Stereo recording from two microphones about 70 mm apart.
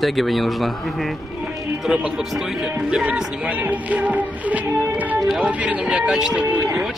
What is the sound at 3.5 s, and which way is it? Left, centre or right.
Music, right.